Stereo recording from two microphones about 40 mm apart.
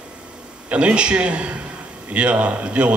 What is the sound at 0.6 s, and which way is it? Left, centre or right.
A man's voice, right.